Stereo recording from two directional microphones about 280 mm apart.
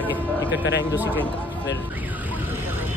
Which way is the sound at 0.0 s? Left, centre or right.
Centre.